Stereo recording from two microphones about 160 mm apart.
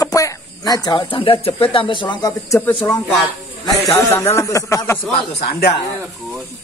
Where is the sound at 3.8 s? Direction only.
15° left (ahead or behind).